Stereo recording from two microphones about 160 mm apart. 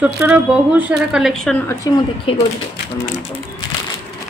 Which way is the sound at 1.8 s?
20° left (ahead or behind).